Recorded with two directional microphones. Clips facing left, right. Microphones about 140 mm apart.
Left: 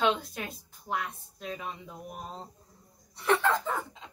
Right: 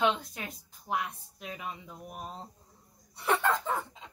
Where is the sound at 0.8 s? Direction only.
15° right (ahead or behind).